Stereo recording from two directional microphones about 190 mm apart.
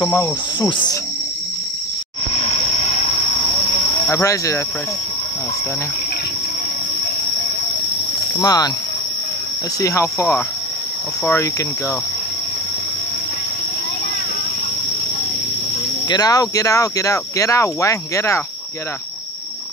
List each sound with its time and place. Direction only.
0.0 s speech: 10° left (ahead or behind)
0.6 s speech: 25° left (ahead or behind)
4.1 s speech: 15° left (ahead or behind)
8.4 s speech: 20° left (ahead or behind)
9.8 s speech: 15° left (ahead or behind)
16.1 s speech: 20° left (ahead or behind)